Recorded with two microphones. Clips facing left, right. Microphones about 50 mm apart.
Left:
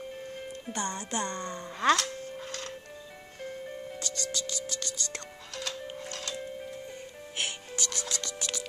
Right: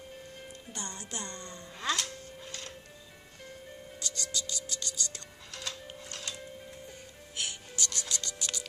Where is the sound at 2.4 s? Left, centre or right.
Left.